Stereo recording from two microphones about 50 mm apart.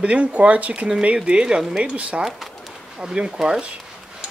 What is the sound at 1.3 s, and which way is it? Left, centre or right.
Speech, centre.